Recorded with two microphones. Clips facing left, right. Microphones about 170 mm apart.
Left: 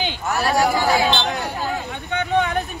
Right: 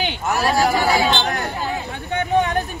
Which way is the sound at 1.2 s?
Centre (ahead or behind).